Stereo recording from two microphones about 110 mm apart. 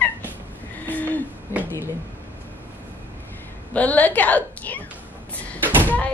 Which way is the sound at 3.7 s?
15° left (ahead or behind).